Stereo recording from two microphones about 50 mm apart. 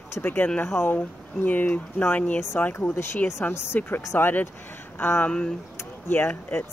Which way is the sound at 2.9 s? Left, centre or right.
Left.